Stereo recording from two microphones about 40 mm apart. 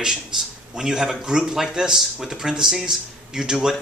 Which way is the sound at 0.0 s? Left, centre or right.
Centre.